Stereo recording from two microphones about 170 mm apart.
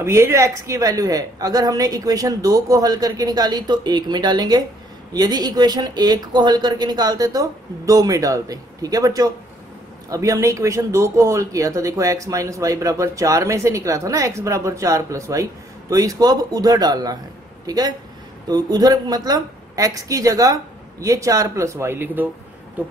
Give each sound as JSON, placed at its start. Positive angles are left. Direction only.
{"t": 0.0, "sound": "speech", "side_deg": -15}